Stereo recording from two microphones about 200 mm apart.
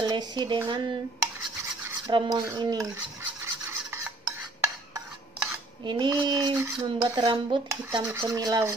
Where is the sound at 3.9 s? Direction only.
15° right (ahead or behind).